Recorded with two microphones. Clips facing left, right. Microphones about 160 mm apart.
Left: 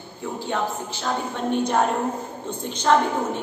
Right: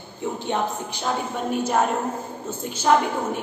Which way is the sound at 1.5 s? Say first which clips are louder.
Left 1 dB; 5° right (ahead or behind).